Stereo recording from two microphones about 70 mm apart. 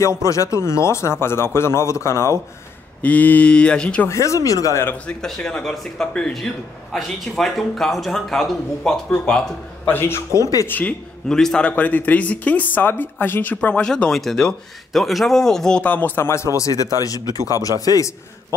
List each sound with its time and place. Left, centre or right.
0.2 s speech: left
3.0 s speech: left
4.1 s speech: left
5.2 s a man's voice: centre
9.8 s speech: left
10.7 s speech: left
11.2 s speech: centre
11.7 s a man's voice: left
15.8 s speech: left
16.2 s speech: left